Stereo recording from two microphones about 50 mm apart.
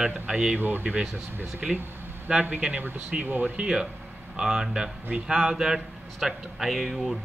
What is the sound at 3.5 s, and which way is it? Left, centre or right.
Speech, centre.